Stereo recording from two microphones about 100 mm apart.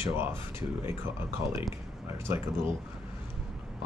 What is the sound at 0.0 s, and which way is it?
Speech, 25° right (ahead or behind).